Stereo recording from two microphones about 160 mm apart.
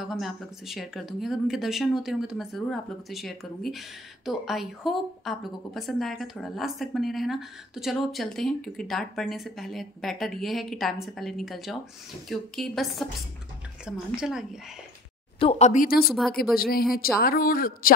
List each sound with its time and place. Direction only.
0.0 s a woman's voice: centre (ahead or behind)
15.3 s speech: 40° left (ahead or behind); by 17.9 s 65° left (ahead or behind)